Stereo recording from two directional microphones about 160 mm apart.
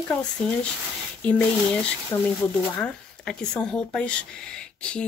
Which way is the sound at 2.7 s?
5° left (ahead or behind).